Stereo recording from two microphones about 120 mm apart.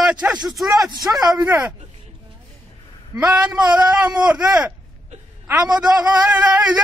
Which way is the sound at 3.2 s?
10° right (ahead or behind).